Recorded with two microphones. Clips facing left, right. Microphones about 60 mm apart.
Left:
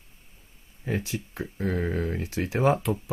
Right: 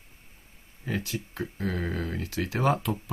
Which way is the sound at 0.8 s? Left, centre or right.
Left.